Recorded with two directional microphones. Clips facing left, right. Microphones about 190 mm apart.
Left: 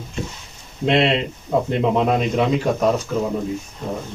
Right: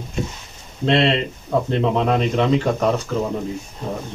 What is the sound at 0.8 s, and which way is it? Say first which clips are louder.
Speech: even; 15° left (ahead or behind).